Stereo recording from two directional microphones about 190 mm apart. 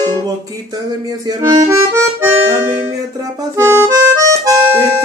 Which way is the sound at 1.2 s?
20° right (ahead or behind).